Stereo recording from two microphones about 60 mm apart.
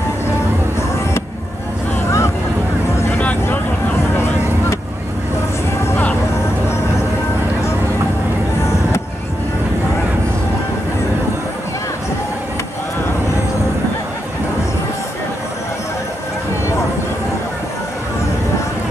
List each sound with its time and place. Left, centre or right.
2.0 s vehicle: left